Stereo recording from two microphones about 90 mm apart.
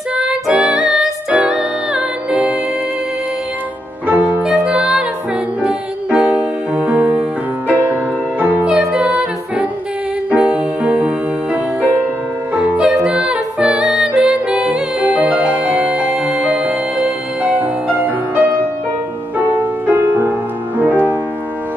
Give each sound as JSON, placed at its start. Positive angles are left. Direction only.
{"t": 0.1, "sound": "music", "side_deg": -10}
{"t": 4.1, "sound": "music", "side_deg": -20}
{"t": 4.4, "sound": "music", "side_deg": -10}